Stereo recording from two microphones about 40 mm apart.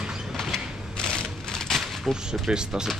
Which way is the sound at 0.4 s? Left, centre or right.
Centre.